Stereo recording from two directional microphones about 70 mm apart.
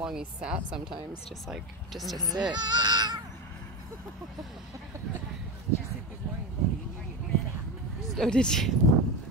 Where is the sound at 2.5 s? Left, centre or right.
Right.